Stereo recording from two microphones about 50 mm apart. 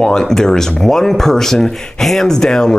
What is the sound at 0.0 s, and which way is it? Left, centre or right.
Speech, centre.